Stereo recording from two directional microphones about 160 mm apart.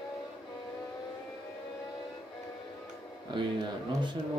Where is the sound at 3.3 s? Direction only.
30° right (ahead or behind).